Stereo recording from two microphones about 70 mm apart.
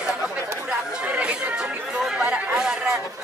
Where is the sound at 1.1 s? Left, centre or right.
Centre.